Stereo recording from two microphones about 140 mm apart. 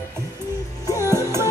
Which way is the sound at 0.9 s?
25° left (ahead or behind).